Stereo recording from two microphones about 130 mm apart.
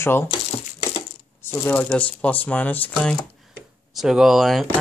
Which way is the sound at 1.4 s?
15° left (ahead or behind).